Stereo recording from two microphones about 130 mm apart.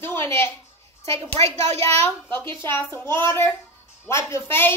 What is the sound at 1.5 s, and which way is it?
Speech, 60° right (ahead or behind).